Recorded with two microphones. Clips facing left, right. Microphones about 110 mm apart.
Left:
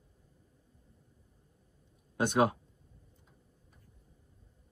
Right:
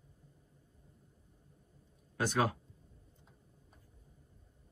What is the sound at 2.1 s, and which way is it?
Speech, 25° left (ahead or behind).